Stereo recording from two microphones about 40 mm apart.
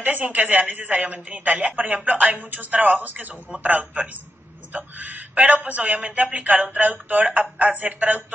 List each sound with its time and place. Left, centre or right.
0.0 s a woman's voice: right